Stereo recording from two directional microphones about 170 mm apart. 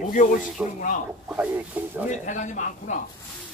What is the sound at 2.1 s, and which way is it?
Speech, 45° left (ahead or behind).